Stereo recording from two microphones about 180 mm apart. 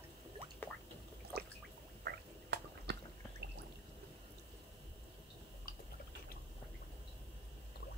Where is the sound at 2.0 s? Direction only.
70° right (ahead or behind).